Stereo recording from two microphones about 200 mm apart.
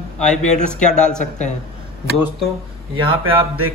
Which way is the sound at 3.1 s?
25° right (ahead or behind).